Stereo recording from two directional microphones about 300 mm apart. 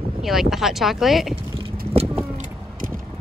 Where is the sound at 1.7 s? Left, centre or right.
Right.